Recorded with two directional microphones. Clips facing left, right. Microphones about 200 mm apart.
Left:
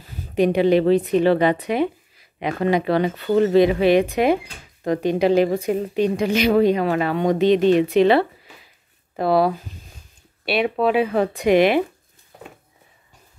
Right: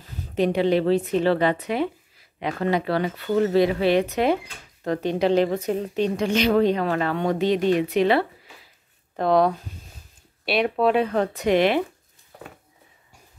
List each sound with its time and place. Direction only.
0.3 s speech: 15° left (ahead or behind)
9.1 s speech: 5° left (ahead or behind)